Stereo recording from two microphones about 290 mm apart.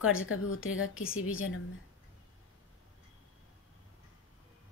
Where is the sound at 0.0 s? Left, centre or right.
Left.